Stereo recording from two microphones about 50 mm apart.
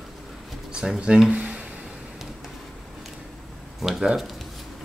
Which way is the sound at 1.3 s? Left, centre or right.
Right.